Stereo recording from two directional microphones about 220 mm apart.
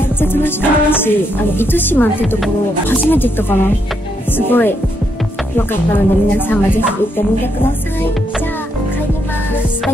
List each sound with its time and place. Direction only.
0.0 s music: 10° left (ahead or behind)